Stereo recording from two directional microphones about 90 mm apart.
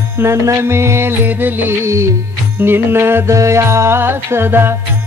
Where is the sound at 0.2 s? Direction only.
30° right (ahead or behind).